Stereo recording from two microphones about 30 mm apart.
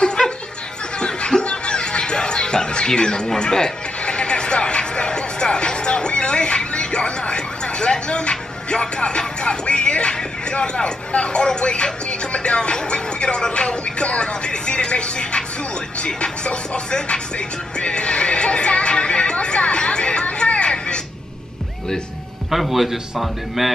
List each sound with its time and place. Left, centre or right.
0.9 s music: left
3.3 s speech: left
4.0 s music: left
17.7 s neigh: left
20.2 s music: left
22.5 s a man's voice: centre